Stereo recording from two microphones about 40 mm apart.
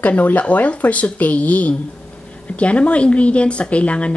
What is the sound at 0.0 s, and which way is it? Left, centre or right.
Speech, left.